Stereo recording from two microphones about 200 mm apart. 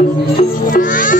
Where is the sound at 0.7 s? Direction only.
40° left (ahead or behind).